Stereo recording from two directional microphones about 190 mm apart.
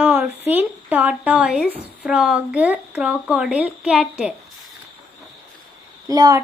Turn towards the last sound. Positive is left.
turn(degrees=-20)  # may be behind; listen again after turning